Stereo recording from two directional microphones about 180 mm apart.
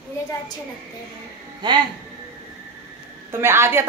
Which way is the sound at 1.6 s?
25° right (ahead or behind).